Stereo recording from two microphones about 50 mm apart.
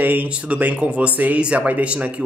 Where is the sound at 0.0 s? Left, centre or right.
Right.